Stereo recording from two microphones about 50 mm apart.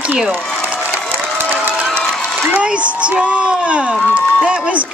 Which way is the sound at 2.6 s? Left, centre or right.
Right.